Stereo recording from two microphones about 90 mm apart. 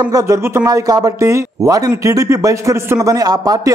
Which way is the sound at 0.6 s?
45° right (ahead or behind).